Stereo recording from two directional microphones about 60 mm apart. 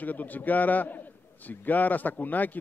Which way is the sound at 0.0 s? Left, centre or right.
Left.